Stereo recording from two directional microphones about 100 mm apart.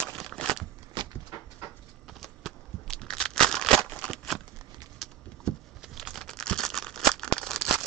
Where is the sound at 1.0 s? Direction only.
50° right (ahead or behind).